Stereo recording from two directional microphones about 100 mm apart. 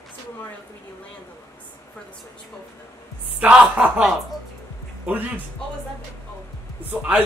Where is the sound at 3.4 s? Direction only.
10° right (ahead or behind).